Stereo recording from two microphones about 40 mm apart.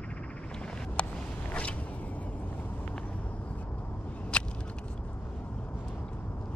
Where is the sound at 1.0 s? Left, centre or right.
Left.